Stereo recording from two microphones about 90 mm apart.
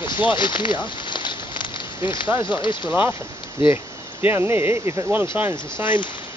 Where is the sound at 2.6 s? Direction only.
65° left (ahead or behind).